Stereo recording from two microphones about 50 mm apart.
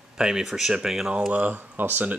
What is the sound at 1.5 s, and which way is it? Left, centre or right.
Speech, right.